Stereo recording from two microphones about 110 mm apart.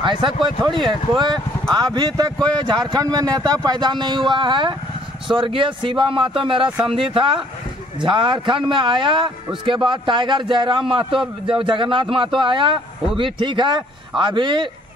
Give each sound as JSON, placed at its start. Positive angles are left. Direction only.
{"t": 0.0, "sound": "a man's voice", "side_deg": -45}